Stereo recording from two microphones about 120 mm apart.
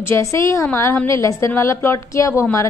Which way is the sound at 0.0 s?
25° left (ahead or behind).